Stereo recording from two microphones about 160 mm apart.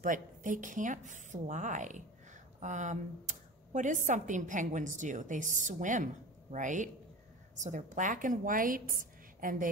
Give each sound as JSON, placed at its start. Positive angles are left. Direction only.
{"t": 0.0, "sound": "a woman's voice", "side_deg": -55}